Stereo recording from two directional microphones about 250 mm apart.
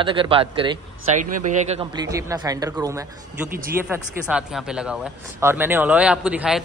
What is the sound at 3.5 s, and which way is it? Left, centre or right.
Speech, right.